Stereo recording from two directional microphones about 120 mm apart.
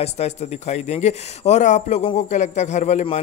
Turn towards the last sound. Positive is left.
turn(degrees=85)